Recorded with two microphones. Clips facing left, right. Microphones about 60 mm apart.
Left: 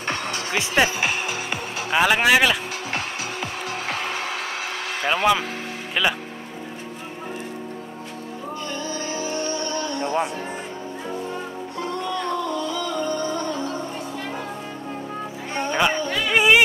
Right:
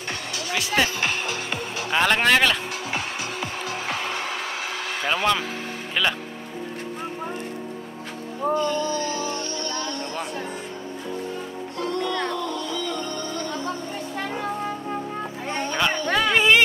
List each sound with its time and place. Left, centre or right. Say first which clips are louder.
0.5 s speech: left 2 dB; left
1.9 s speech: left 2 dB; centre
5.0 s speech: left 3 dB; centre
8.6 s music: right 4 dB; centre
11.8 s music: right 1 dB; centre
15.5 s music: left 3 dB; centre
16.3 s speech: left 2 dB; centre